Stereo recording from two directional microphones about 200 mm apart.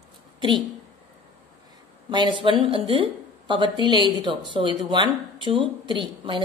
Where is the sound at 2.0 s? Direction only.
25° right (ahead or behind).